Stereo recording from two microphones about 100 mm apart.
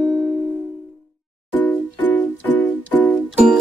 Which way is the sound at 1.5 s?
20° left (ahead or behind).